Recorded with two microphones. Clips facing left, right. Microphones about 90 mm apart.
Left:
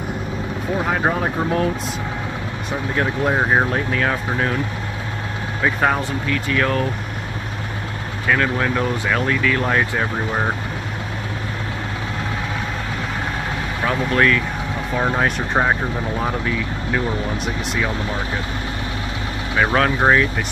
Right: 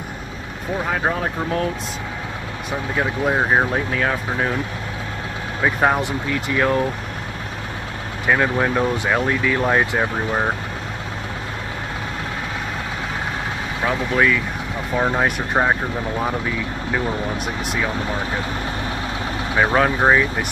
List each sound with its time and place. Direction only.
0.8 s speech: 5° left (ahead or behind)
3.0 s speech: centre (ahead or behind)
5.6 s speech: 10° right (ahead or behind)
8.3 s speech: 15° right (ahead or behind)
13.8 s speech: 5° right (ahead or behind)
19.5 s speech: 10° right (ahead or behind)